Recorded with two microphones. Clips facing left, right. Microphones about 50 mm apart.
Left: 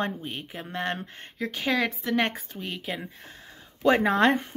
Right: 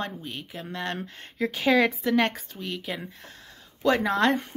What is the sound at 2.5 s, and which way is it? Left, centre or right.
Speech, centre.